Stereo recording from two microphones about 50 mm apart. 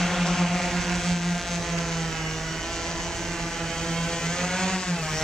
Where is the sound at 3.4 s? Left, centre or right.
Centre.